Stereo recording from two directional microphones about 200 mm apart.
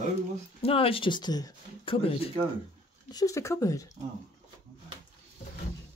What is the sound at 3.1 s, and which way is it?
Speech, 15° left (ahead or behind).